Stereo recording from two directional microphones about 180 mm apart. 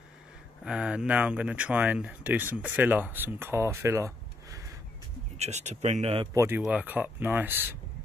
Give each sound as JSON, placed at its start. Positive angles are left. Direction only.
{"t": 0.7, "sound": "speech", "side_deg": -5}
{"t": 5.4, "sound": "speech", "side_deg": -40}
{"t": 6.3, "sound": "speech", "side_deg": -15}